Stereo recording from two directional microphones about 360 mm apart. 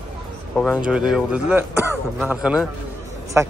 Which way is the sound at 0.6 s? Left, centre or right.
Centre.